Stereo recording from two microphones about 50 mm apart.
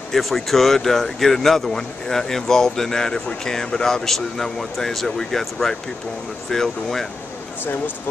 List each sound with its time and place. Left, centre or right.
0.1 s speech: centre
7.6 s speech: left